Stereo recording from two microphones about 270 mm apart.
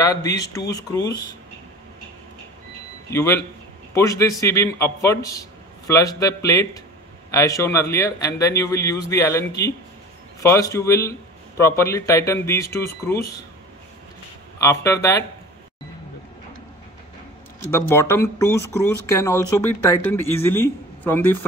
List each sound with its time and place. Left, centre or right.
0.0 s a man's voice: centre
3.1 s a man's voice: centre
14.6 s a man's voice: centre
17.6 s a man's voice: centre